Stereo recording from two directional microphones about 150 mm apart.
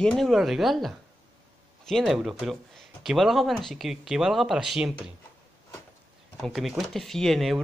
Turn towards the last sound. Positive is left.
turn(degrees=0)  # may be behind; listen again after turning